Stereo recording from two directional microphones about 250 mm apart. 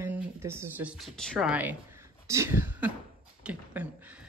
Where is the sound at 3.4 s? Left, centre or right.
Centre.